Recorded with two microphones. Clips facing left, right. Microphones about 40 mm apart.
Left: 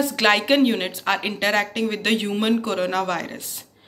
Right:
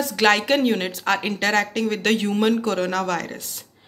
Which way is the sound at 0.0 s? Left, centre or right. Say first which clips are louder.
Even; left.